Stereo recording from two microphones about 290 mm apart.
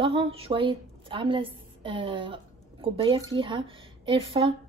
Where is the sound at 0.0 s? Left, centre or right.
Centre.